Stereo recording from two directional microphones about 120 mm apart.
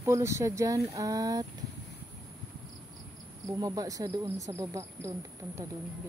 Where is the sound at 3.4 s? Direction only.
30° right (ahead or behind).